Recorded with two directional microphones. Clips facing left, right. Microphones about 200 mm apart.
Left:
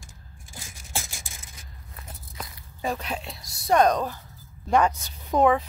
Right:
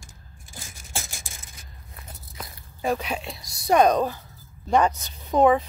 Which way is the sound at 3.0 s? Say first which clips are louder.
Right 2 dB; centre (ahead or behind).